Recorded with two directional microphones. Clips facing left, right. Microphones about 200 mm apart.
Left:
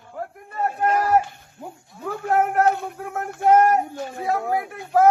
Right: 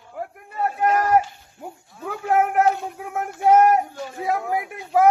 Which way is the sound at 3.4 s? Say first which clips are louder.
Right 1 dB; 55° left (ahead or behind).